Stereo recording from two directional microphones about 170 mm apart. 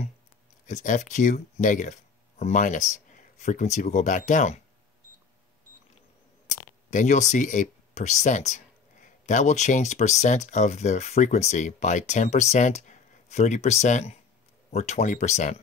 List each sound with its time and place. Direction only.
0.7 s speech: 50° left (ahead or behind)
6.9 s speech: 45° left (ahead or behind)